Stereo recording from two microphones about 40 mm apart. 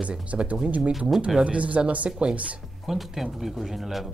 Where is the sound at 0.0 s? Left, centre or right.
Right.